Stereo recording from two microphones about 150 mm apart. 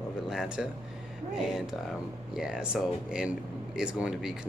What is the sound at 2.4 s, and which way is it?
Speech, 5° right (ahead or behind).